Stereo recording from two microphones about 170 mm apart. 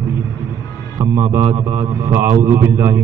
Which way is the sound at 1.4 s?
30° right (ahead or behind).